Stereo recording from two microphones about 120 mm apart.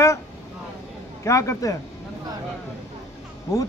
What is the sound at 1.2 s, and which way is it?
Speech, 25° left (ahead or behind).